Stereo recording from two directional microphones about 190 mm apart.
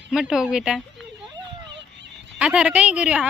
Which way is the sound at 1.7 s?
70° right (ahead or behind).